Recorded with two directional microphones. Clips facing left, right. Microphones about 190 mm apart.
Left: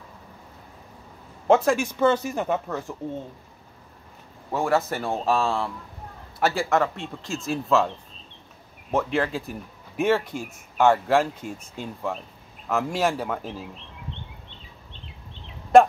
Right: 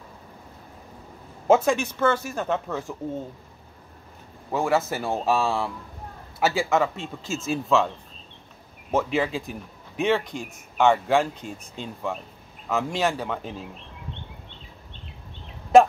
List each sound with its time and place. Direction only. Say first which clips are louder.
1.5 s speech: even; centre (ahead or behind)
1.8 s speech: left 2 dB; 15° left (ahead or behind)
2.9 s speech: right 1 dB; centre (ahead or behind)
4.5 s speech: even; centre (ahead or behind)
8.9 s speech: even; 5° right (ahead or behind)